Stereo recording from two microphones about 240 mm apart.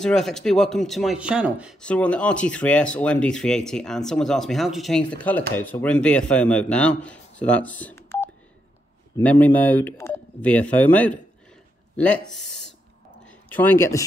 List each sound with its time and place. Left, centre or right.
0.0 s a man's voice: centre
12.4 s a sound: centre
13.3 s speech: centre